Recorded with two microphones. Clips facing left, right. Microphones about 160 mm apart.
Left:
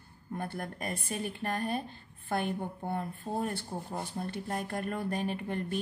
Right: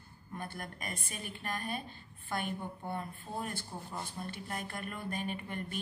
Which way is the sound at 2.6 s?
50° left (ahead or behind).